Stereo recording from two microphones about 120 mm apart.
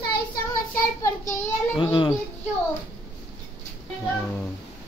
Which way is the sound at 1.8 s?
40° left (ahead or behind).